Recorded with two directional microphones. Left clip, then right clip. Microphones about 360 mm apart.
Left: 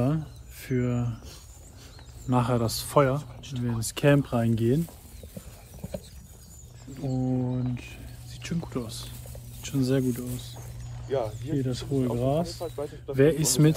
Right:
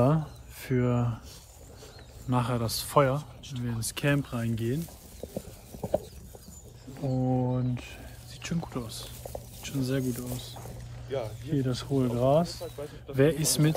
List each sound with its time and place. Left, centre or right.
0.0 s speech: centre
2.2 s speech: centre
7.0 s speech: centre
11.1 s speech: centre
11.5 s speech: centre
12.6 s speech: centre
13.1 s speech: centre